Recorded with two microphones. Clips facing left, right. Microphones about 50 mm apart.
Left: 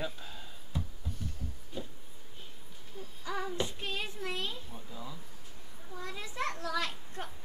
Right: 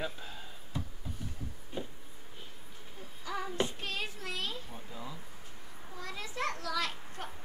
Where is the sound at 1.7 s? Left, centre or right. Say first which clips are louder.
Right 2 dB; right.